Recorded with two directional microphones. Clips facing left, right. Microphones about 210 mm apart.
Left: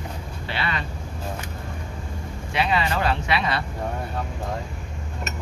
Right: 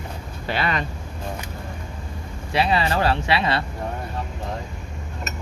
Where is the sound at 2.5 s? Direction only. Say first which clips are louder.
Right 2 dB; 30° right (ahead or behind).